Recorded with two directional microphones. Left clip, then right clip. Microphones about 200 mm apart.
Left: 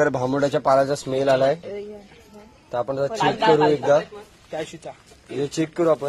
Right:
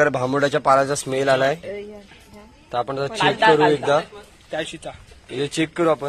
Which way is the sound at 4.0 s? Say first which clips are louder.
Right 1 dB; 20° right (ahead or behind).